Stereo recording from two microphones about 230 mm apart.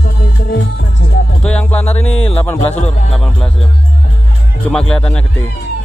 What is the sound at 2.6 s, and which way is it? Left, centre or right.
Speech, left.